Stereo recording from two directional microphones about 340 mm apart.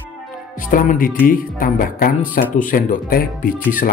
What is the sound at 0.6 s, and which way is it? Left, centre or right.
Speech, left.